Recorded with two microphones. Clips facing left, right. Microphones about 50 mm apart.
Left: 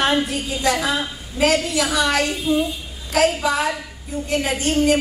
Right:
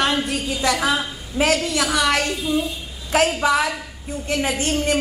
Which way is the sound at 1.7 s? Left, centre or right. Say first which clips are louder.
Even; right.